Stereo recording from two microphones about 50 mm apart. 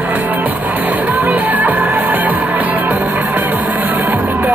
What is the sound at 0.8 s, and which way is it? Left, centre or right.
Music, right.